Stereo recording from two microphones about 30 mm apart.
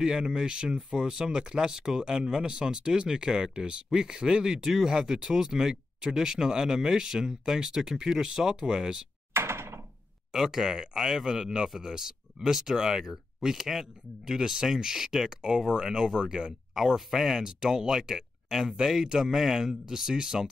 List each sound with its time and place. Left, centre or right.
0.0 s speech: right
1.0 s speech: right
10.3 s speech: centre
16.2 s speech: right
16.7 s speech: centre
17.4 s speech: right